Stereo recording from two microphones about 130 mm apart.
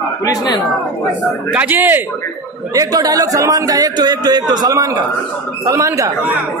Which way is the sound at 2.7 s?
30° right (ahead or behind).